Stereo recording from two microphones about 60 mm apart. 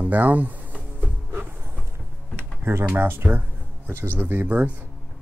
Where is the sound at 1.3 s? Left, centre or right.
Right.